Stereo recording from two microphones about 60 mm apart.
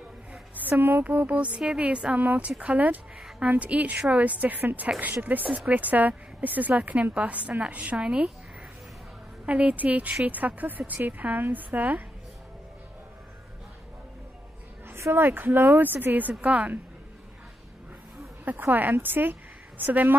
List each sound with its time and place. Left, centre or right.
0.3 s a woman's voice: right
9.5 s a woman's voice: right
14.9 s speech: right
18.4 s speech: right